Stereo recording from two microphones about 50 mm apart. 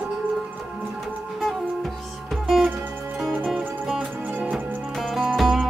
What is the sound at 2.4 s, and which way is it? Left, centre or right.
Music, centre.